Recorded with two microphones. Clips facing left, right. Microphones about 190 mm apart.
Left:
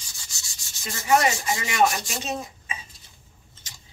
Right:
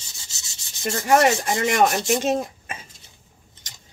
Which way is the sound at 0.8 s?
55° right (ahead or behind).